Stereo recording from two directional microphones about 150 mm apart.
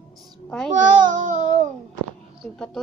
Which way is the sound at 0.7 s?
60° right (ahead or behind).